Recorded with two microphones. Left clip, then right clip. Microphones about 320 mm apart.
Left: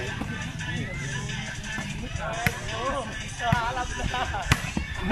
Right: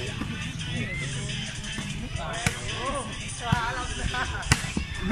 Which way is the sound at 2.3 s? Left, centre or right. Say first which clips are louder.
Left 2 dB; left.